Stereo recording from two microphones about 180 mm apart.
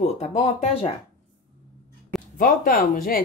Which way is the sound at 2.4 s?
50° left (ahead or behind).